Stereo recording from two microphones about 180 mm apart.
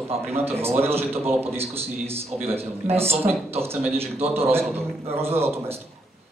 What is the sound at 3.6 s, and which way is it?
Speech, 15° right (ahead or behind).